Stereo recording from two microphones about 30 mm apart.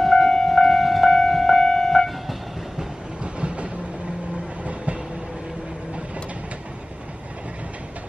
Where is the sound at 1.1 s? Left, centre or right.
Centre.